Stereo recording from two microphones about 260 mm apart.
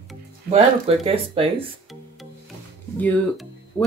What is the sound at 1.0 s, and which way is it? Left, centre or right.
Speech, right.